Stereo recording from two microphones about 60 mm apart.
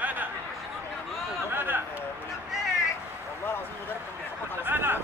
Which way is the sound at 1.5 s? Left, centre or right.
Right.